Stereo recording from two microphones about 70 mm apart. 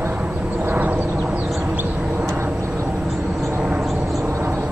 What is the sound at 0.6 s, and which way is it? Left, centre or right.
Vehicle, right.